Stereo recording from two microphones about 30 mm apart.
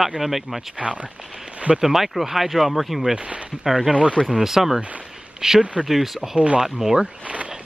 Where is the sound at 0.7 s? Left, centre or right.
Right.